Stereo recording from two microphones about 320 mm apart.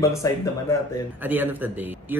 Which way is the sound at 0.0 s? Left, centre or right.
Centre.